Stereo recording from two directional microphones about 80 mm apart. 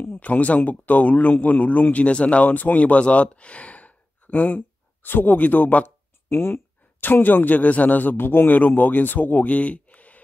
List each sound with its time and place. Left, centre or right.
0.0 s speech: left